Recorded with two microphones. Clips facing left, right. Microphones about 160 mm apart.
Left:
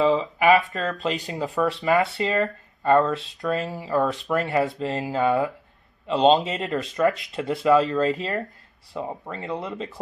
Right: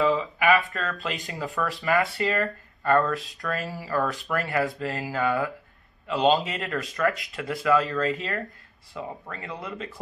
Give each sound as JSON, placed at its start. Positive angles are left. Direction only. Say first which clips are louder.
{"t": 0.0, "sound": "speech", "louder": "left 3 dB", "side_deg": 30}